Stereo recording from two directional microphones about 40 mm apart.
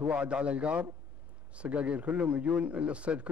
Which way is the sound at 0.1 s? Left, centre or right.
Right.